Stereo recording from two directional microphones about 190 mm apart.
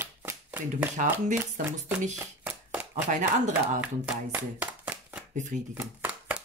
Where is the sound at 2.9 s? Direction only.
40° right (ahead or behind).